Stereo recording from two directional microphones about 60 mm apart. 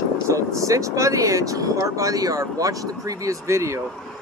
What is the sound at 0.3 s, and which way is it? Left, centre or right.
Speech, right.